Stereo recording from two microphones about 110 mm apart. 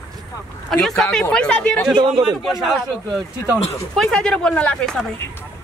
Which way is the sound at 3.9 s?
5° left (ahead or behind).